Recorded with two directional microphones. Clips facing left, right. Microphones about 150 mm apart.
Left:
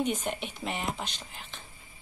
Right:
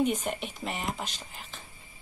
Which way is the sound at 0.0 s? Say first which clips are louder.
Right 2 dB; centre (ahead or behind).